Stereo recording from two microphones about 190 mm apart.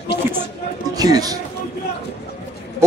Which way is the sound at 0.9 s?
20° right (ahead or behind).